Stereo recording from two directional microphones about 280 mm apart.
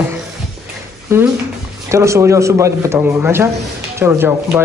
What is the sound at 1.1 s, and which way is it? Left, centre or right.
Speech, centre.